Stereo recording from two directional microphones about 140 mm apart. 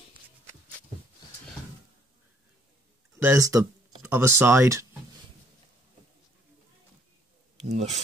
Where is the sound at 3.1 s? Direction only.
20° right (ahead or behind).